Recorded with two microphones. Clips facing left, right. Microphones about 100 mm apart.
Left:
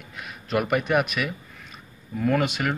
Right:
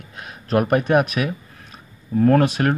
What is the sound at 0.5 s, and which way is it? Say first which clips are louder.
Speech: right 5 dB; 40° right (ahead or behind).